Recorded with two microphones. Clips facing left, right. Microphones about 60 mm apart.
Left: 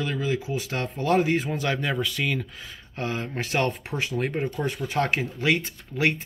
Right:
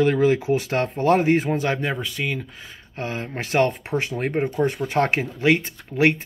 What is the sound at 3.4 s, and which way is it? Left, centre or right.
Speech, right.